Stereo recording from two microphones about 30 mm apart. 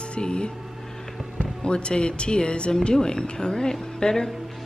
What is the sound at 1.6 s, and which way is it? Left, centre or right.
A woman's voice, left.